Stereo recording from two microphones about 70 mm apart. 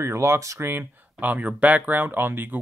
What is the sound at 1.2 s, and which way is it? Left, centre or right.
Speech, right.